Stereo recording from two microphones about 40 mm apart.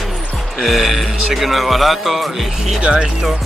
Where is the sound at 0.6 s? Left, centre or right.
Centre.